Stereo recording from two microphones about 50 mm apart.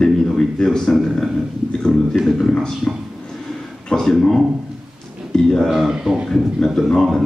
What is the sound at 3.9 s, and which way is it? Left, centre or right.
A man's voice, centre.